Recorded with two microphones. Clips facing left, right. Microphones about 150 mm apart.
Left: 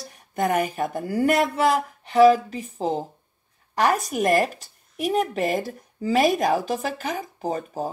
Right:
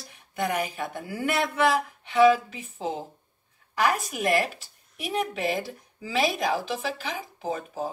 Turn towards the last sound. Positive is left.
turn(degrees=40)  # may be behind; listen again after turning